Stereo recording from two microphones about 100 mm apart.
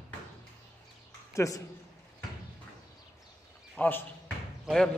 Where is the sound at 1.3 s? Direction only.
30° left (ahead or behind).